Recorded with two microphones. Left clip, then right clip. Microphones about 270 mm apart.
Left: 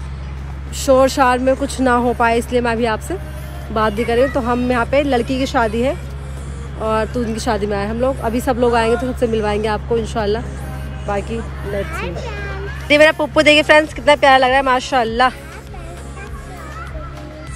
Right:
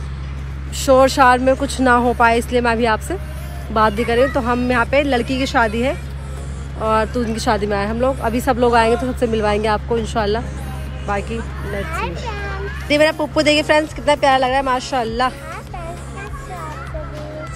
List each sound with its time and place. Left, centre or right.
0.7 s speech: centre
12.3 s speech: centre